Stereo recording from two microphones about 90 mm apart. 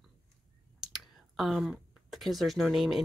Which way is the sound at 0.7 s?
5° right (ahead or behind).